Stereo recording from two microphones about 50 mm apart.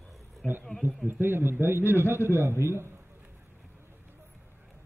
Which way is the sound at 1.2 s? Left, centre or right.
Right.